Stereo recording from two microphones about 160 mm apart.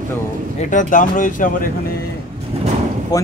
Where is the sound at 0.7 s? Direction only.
55° left (ahead or behind).